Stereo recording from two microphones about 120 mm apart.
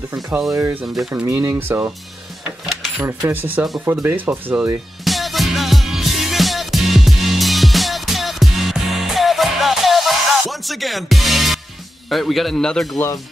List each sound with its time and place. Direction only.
0.5 s speech: 25° right (ahead or behind)
2.7 s cash register: 5° right (ahead or behind)
3.1 s speech: 15° right (ahead or behind)
5.0 s music: centre (ahead or behind)
12.1 s a man's voice: centre (ahead or behind)